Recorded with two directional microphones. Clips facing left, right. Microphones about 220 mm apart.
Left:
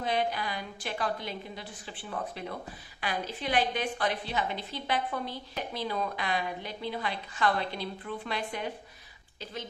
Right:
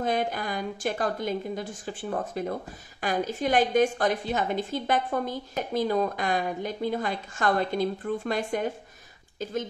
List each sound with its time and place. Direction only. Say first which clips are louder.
0.0 s a woman's voice: right 3 dB; 45° right (ahead or behind)